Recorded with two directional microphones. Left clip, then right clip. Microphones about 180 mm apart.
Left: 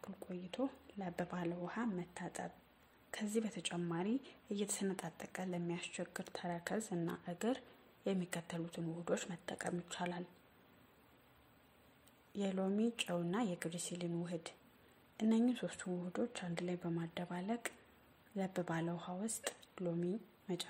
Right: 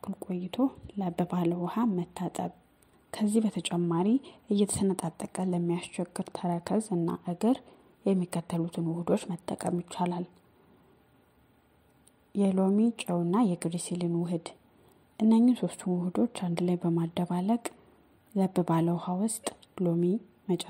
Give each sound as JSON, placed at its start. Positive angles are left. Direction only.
{"t": 0.0, "sound": "speech", "side_deg": -35}
{"t": 12.3, "sound": "speech", "side_deg": -25}